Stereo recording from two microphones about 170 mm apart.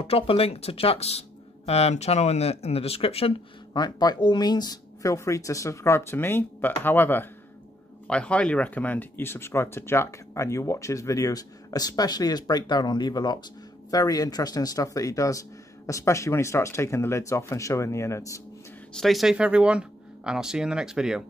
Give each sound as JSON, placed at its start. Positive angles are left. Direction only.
{"t": 0.0, "sound": "speech", "side_deg": 35}
{"t": 18.9, "sound": "speech", "side_deg": 0}